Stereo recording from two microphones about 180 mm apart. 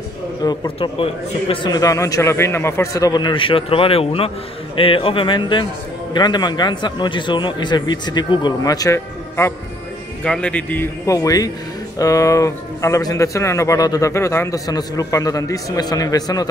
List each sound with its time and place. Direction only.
1.5 s speech: 25° left (ahead or behind)
10.2 s speech: 5° left (ahead or behind)